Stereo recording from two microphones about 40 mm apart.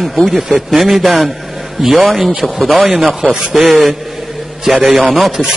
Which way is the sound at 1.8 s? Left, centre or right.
Centre.